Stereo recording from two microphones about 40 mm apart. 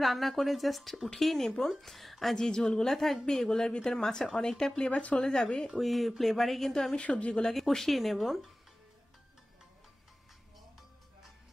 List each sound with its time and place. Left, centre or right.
0.0 s speech: centre
2.3 s a woman's voice: centre
4.7 s speech: left
5.2 s a woman's voice: centre
5.8 s a woman's voice: centre
7.0 s a woman's voice: left
7.4 s speech: centre